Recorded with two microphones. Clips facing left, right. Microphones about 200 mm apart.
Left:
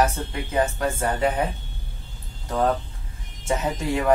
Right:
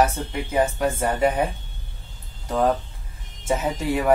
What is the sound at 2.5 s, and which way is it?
Speech, 10° right (ahead or behind).